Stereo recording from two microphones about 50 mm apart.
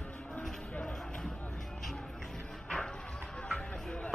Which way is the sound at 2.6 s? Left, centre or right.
Centre.